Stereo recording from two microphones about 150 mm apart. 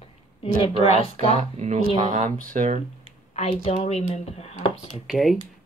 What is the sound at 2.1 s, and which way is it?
Speech, 60° right (ahead or behind).